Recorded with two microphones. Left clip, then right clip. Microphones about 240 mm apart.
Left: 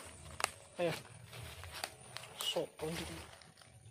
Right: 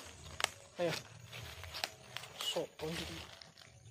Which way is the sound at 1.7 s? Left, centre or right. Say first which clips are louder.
Right 3 dB; centre.